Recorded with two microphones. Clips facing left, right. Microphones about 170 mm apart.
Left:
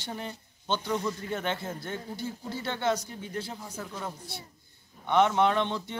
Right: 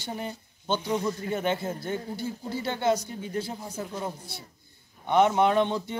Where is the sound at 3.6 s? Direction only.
25° right (ahead or behind).